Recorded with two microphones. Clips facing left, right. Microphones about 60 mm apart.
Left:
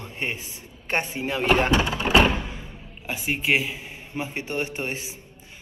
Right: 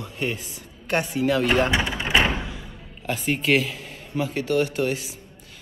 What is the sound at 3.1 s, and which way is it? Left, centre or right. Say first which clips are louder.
A man's voice: right 2 dB; centre.